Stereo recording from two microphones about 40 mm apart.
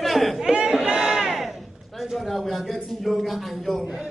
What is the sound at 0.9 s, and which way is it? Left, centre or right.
Battle cry, right.